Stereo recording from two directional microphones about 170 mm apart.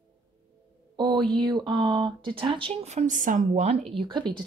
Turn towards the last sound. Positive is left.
turn(degrees=-25)  # may be behind; listen again after turning